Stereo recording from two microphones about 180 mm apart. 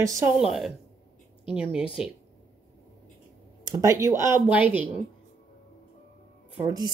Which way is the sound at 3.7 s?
20° right (ahead or behind).